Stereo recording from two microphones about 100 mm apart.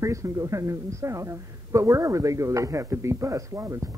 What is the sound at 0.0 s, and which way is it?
Speech, 30° right (ahead or behind).